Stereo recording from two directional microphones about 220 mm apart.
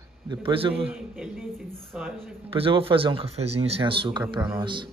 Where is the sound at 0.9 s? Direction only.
5° right (ahead or behind).